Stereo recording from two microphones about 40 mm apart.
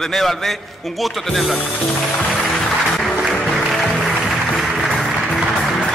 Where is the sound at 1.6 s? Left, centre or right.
Left.